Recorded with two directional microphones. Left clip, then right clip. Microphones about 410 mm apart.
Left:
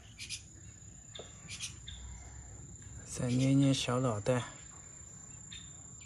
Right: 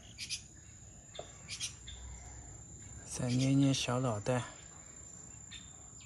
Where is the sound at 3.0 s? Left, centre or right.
Centre.